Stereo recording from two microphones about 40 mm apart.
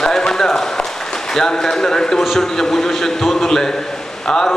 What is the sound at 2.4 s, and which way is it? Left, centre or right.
A man's voice, centre.